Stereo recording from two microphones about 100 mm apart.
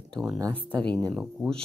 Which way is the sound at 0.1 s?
Centre (ahead or behind).